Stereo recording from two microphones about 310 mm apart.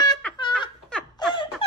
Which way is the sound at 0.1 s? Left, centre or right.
Centre.